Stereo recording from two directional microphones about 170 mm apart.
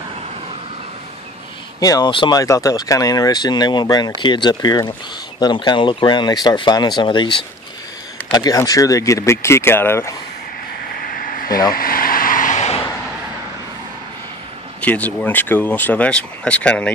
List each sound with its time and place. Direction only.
1.8 s speech: 20° left (ahead or behind)
11.2 s a sound: 55° left (ahead or behind)
11.7 s vehicle: 60° left (ahead or behind); by 12.8 s 40° left (ahead or behind)
14.8 s speech: 10° left (ahead or behind)